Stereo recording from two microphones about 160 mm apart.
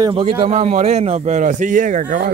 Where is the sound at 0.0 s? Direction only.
30° right (ahead or behind); by 2.3 s 55° right (ahead or behind).